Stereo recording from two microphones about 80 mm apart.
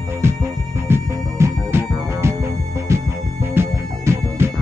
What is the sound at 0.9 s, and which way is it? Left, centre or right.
Music, right.